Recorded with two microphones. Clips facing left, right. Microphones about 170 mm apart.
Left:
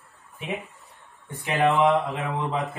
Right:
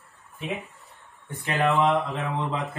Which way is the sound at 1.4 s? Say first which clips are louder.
Left 2 dB; 15° left (ahead or behind).